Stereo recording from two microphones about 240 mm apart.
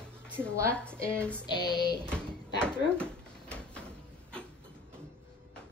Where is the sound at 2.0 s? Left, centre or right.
Centre.